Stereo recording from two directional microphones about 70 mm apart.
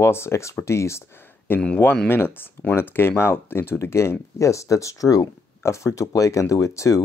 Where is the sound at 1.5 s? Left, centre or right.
Left.